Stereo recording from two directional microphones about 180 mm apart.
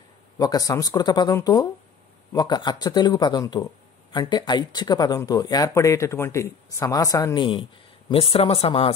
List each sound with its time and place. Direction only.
0.4 s speech: 20° left (ahead or behind)